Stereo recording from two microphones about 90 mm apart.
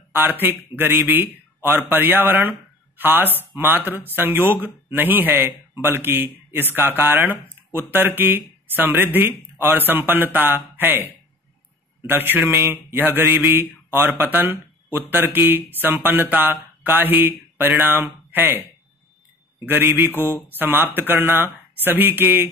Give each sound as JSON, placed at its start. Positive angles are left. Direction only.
{"t": 0.1, "sound": "speech", "side_deg": -25}
{"t": 12.1, "sound": "speech", "side_deg": -25}
{"t": 19.6, "sound": "speech", "side_deg": -25}